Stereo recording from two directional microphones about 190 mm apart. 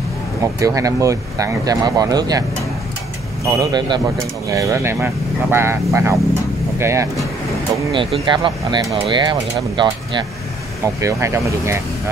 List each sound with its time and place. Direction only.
0.4 s speech: 15° right (ahead or behind)
3.5 s speech: 20° right (ahead or behind)
7.9 s speech: 25° right (ahead or behind)